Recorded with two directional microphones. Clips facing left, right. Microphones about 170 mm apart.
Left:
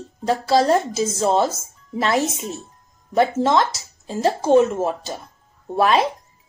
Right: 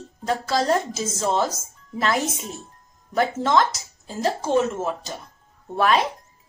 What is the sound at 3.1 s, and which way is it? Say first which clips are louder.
Speech: left 3 dB; 30° left (ahead or behind).